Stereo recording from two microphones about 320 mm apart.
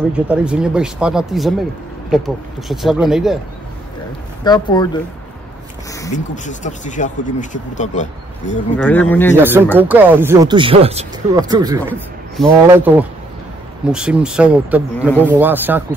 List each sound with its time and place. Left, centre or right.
0.3 s speech: centre
4.5 s speech: centre
6.1 s speech: left
8.7 s speech: centre
9.4 s speech: centre